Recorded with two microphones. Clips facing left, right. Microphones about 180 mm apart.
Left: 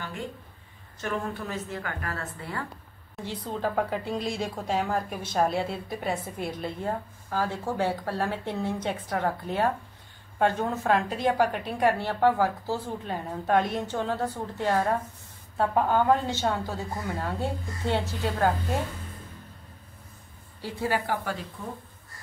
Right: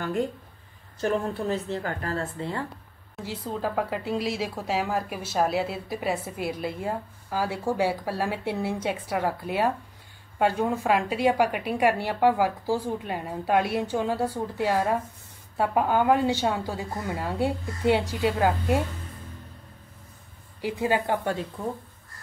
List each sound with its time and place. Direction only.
1.0 s a woman's voice: 30° right (ahead or behind)
3.2 s speech: 5° right (ahead or behind)
20.6 s a woman's voice: 15° right (ahead or behind)